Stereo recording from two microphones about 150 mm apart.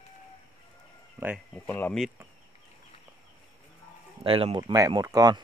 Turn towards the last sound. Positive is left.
turn(degrees=-25)  # may be behind; listen again after turning